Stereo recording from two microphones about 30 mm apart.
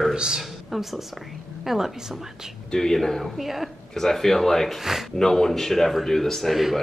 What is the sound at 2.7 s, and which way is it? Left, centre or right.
Speech, centre.